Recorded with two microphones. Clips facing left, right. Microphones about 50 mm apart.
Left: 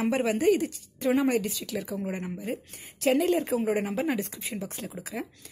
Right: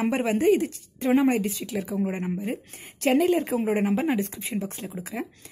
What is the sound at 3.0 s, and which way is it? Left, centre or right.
Speech, right.